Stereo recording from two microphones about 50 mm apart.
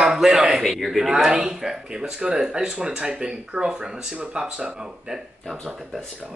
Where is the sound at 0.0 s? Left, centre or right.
Centre.